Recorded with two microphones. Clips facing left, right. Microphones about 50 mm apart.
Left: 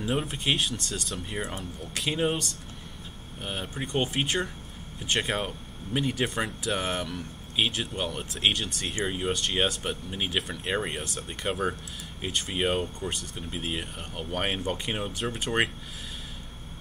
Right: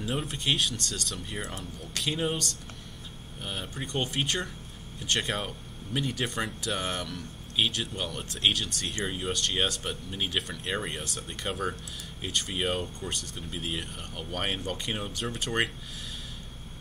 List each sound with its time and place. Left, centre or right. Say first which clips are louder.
0.0 s speech: left 3 dB; centre